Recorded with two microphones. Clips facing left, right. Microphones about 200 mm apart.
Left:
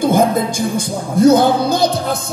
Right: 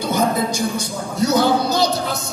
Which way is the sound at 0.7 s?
50° left (ahead or behind).